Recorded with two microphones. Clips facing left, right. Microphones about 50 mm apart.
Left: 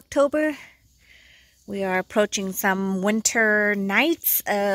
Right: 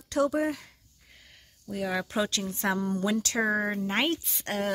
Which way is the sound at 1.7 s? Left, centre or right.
Left.